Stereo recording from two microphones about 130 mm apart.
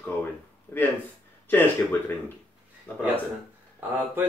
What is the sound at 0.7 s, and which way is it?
Speech, 15° left (ahead or behind).